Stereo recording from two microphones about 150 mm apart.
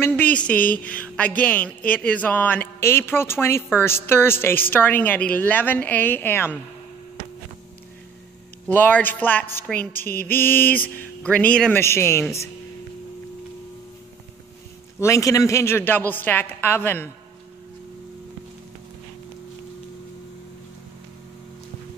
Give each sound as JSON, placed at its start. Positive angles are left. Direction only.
{"t": 0.0, "sound": "a sound", "side_deg": 10}
{"t": 0.5, "sound": "speech", "side_deg": 10}
{"t": 8.6, "sound": "speech", "side_deg": 10}
{"t": 15.0, "sound": "a man's voice", "side_deg": 20}